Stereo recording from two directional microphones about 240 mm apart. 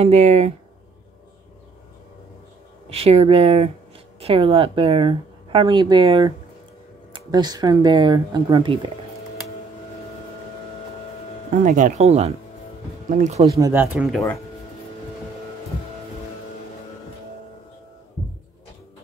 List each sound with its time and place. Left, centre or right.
0.0 s speech: right
2.9 s speech: right
11.5 s speech: right
13.6 s speech: centre